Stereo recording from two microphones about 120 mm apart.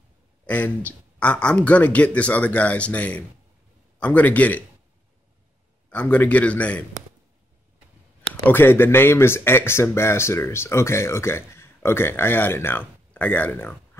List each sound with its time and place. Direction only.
0.5 s speech: 15° left (ahead or behind)
5.9 s speech: 10° left (ahead or behind)
8.3 s speech: 15° left (ahead or behind)